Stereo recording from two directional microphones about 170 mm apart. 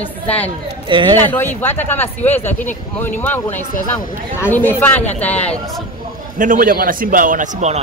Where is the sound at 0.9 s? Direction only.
25° right (ahead or behind).